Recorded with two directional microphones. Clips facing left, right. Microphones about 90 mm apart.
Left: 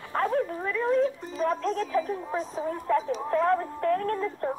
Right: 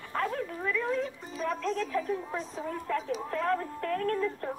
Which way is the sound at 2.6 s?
30° left (ahead or behind).